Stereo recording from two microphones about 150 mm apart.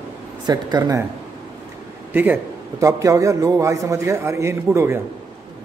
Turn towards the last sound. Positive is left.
turn(degrees=-20)  # may be behind; listen again after turning